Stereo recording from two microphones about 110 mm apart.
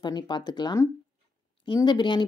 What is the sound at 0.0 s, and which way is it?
A woman's voice, 40° left (ahead or behind).